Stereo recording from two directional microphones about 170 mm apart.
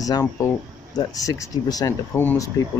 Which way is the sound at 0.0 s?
20° left (ahead or behind).